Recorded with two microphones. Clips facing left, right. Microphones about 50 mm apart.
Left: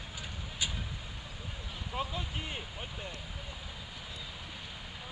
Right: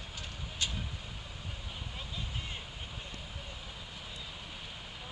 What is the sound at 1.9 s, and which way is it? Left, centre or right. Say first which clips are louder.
Vehicle: left 9 dB; left.